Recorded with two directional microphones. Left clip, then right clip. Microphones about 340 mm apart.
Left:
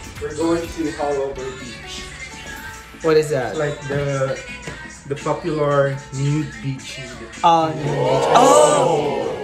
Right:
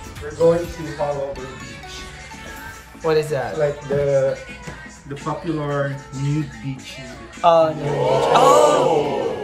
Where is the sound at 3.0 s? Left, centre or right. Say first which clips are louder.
Left 3 dB; centre.